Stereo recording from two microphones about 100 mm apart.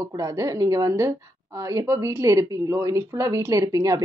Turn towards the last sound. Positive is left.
turn(degrees=-35)  # may be behind; listen again after turning